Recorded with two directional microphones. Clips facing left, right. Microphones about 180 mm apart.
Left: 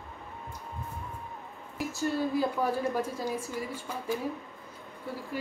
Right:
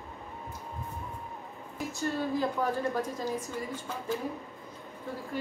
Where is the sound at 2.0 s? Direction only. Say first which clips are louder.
Left 2 dB; 10° left (ahead or behind).